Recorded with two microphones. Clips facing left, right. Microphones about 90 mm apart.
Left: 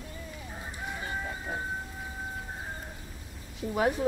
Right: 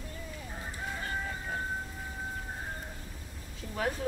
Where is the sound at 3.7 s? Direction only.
20° left (ahead or behind).